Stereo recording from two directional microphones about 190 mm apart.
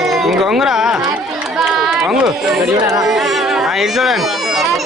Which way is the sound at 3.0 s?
Centre (ahead or behind).